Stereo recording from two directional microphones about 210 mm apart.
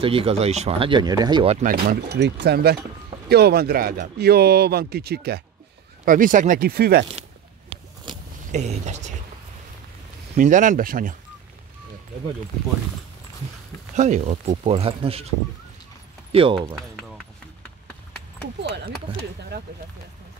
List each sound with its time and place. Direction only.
0.0 s speech: 25° right (ahead or behind)
1.7 s speech: 45° right (ahead or behind)
8.5 s speech: 35° right (ahead or behind)
10.3 s speech: 35° right (ahead or behind)
13.9 s speech: 35° right (ahead or behind)
16.3 s speech: 25° right (ahead or behind)